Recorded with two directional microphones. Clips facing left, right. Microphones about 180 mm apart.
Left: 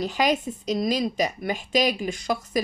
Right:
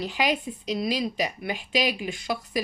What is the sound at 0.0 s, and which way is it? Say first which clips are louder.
A woman's voice: left 3 dB; 45° left (ahead or behind).